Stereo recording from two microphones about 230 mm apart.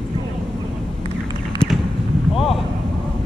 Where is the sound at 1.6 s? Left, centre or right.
Centre.